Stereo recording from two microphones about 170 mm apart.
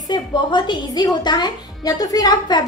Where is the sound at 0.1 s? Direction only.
25° left (ahead or behind).